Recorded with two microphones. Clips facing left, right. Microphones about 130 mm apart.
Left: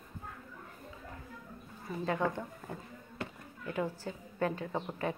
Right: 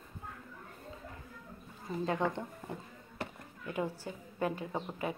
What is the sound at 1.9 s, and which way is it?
Speech, 25° right (ahead or behind).